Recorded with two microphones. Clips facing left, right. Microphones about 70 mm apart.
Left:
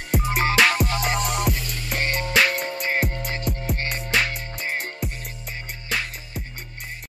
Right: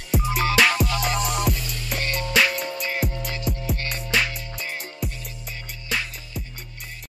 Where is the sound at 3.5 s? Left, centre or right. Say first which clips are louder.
Right 1 dB; centre.